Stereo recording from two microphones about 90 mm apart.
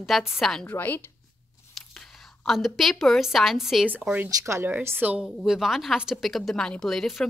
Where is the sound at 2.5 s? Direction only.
Centre (ahead or behind).